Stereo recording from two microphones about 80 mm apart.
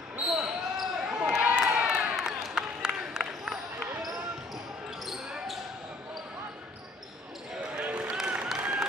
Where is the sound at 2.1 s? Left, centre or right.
Centre.